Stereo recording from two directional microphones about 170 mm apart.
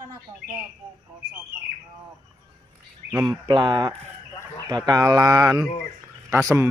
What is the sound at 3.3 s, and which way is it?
Speech, 25° right (ahead or behind).